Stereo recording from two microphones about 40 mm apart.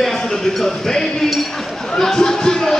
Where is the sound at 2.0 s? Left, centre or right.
Centre.